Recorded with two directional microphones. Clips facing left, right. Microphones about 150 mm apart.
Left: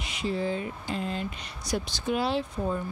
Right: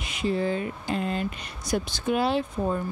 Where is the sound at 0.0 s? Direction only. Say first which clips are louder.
Right 3 dB; 55° right (ahead or behind).